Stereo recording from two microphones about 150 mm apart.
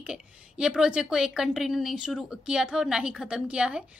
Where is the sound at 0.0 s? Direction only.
5° right (ahead or behind).